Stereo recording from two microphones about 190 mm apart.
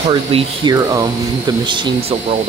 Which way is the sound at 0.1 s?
25° right (ahead or behind).